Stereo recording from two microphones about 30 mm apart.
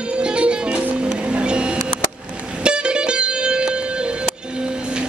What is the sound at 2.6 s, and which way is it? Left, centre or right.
Music, right.